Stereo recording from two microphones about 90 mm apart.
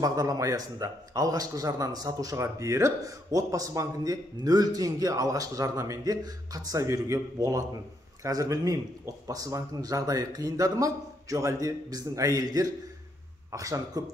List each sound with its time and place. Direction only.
0.0 s speech: 40° right (ahead or behind)